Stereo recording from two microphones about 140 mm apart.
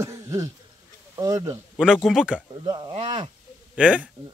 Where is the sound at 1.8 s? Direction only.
5° right (ahead or behind).